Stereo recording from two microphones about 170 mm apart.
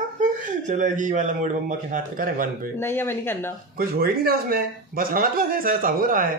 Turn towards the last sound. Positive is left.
turn(degrees=-55)  # may be behind; listen again after turning